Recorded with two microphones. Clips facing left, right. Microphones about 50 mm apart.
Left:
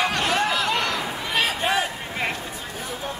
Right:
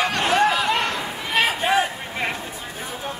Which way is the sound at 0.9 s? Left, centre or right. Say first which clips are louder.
Even; right.